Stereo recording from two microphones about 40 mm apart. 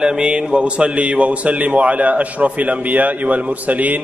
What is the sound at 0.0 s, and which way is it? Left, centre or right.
A man's voice, right.